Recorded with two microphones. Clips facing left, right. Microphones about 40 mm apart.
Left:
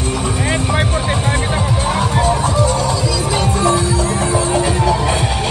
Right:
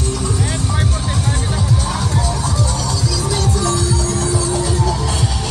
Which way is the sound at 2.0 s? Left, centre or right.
Left.